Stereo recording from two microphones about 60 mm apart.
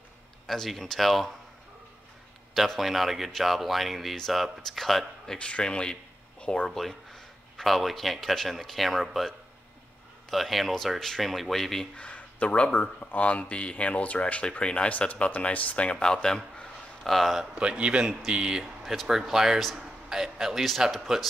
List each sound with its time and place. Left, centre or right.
0.5 s speech: centre
2.5 s speech: centre
6.7 s speech: centre
10.3 s speech: centre
11.9 s speech: left; by 17.5 s centre
17.6 s a man's voice: centre
18.8 s speech: centre